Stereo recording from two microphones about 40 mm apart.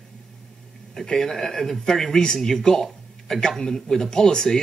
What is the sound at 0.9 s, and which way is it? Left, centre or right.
A man's voice, centre.